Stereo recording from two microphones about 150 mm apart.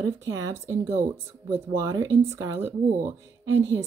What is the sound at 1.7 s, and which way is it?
Speech, 25° right (ahead or behind).